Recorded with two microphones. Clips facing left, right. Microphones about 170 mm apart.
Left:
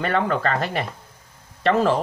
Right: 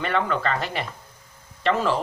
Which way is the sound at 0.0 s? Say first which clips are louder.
Left 2 dB; 45° left (ahead or behind).